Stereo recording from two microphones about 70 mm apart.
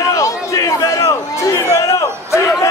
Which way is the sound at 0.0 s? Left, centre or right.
Left.